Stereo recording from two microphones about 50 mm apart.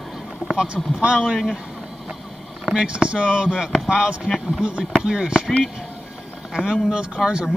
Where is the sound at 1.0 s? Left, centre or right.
Centre.